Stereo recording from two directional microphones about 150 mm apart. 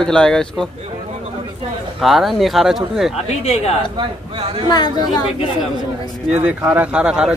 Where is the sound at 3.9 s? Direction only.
35° right (ahead or behind).